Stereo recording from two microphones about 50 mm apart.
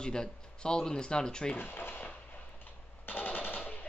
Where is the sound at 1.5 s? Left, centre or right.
Left.